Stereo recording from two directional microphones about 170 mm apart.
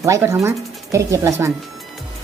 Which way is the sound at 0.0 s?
15° right (ahead or behind).